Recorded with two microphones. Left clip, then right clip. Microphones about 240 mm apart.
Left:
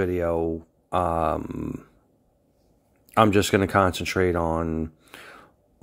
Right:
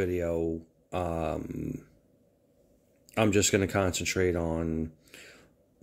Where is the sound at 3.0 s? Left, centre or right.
Centre.